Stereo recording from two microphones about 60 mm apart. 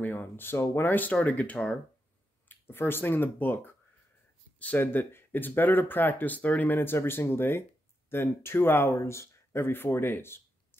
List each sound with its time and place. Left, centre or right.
0.0 s speech: left
1.2 s speech: left
2.4 s speech: left
4.7 s speech: left
6.8 s speech: left